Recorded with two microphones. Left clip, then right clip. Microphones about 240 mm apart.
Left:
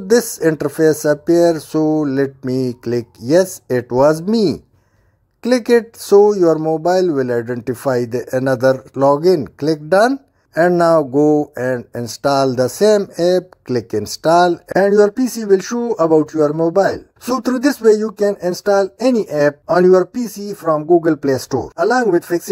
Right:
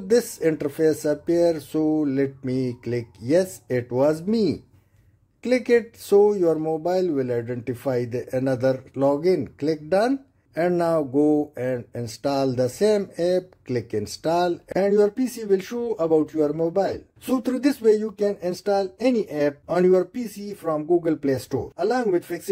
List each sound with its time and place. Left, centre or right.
0.1 s speech: left
21.0 s speech: left